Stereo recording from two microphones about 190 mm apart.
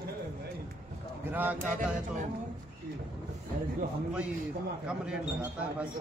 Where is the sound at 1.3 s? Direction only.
10° right (ahead or behind).